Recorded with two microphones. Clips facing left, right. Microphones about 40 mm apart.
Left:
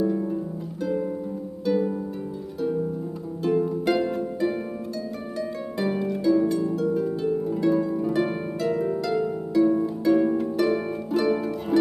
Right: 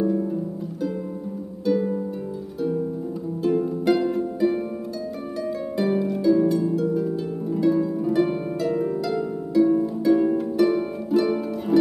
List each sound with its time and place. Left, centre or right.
0.0 s harp: centre
1.6 s harp: centre
3.4 s harp: centre